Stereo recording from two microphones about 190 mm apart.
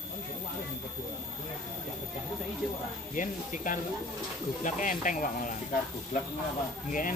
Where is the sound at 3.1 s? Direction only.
45° left (ahead or behind).